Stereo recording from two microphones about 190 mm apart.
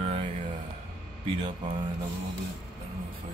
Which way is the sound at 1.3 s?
25° right (ahead or behind).